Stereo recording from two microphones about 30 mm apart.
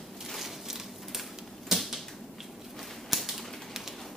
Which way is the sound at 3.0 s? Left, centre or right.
Centre.